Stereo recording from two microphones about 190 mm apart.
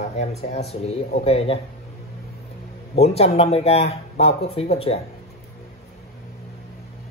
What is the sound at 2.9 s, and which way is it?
Speech, 35° left (ahead or behind).